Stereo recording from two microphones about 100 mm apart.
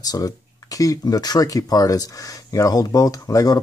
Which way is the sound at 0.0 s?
40° left (ahead or behind).